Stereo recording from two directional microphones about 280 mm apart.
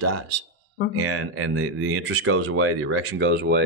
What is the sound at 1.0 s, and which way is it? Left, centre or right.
Speech, right.